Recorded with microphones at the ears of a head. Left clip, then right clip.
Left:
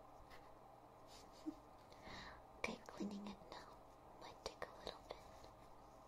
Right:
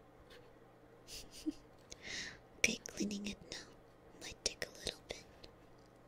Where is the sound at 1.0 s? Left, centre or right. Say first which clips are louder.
Right 9 dB; right.